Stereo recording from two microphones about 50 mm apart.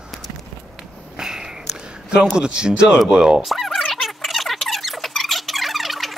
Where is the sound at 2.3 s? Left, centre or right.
Centre.